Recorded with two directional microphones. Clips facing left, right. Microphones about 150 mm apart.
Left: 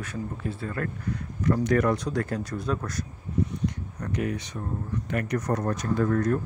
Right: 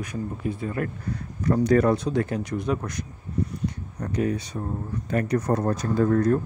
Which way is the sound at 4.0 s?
30° right (ahead or behind).